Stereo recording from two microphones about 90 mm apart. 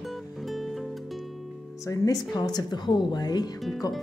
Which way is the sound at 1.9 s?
45° left (ahead or behind).